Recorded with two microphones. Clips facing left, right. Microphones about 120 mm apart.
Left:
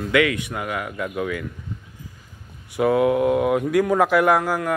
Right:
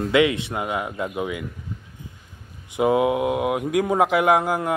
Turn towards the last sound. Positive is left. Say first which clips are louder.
# even
turn(degrees=-20)  # may be behind; listen again after turning